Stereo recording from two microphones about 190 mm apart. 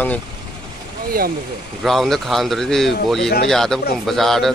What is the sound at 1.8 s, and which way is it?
Speech, centre (ahead or behind).